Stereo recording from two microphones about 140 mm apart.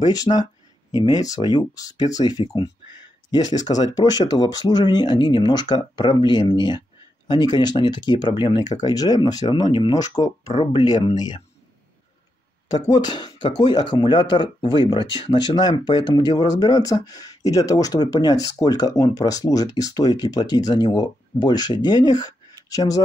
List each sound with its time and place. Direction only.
0.0 s speech: 25° left (ahead or behind)
12.7 s speech: 30° left (ahead or behind)